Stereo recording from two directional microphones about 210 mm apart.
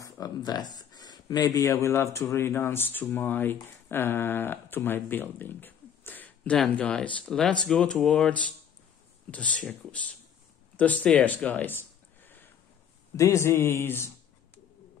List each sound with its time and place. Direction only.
0.0 s a man's voice: 20° left (ahead or behind)